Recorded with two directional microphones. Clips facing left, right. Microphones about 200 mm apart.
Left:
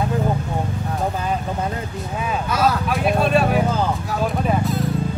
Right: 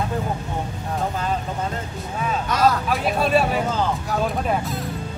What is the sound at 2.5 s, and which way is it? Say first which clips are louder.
Vehicle: right 1 dB; 5° left (ahead or behind).